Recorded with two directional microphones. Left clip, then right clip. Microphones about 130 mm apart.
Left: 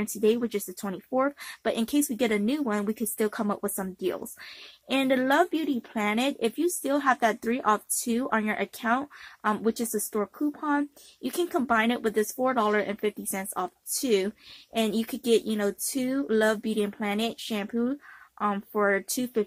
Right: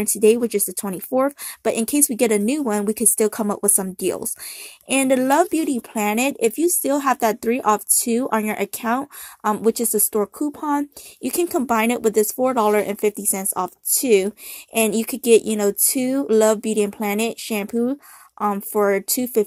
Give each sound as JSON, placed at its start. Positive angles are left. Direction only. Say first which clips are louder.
{"t": 0.0, "sound": "a woman's voice", "louder": "right 9 dB", "side_deg": -35}